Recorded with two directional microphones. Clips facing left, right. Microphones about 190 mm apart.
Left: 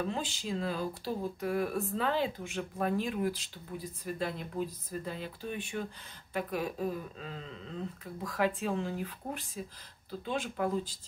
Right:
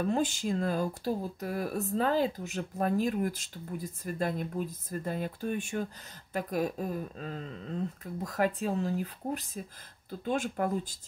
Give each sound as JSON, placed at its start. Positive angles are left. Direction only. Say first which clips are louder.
{"t": 0.0, "sound": "speech", "louder": "right 6 dB", "side_deg": -50}